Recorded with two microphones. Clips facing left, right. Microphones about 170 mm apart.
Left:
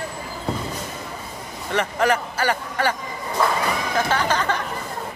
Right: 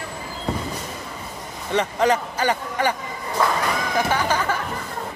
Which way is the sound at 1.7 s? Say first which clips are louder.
Right 1 dB; 20° right (ahead or behind).